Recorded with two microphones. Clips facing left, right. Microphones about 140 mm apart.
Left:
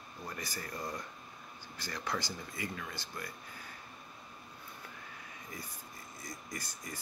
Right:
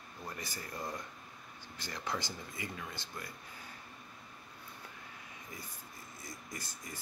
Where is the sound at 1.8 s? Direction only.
20° right (ahead or behind).